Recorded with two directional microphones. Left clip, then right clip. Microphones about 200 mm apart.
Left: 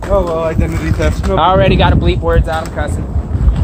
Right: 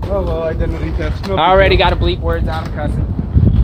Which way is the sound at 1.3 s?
10° left (ahead or behind).